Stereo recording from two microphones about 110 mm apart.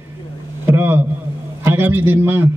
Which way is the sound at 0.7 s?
20° right (ahead or behind).